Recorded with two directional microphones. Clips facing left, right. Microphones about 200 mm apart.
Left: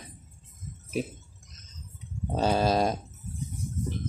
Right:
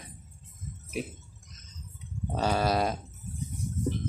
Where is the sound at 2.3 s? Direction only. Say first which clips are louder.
Left 3 dB; 20° left (ahead or behind).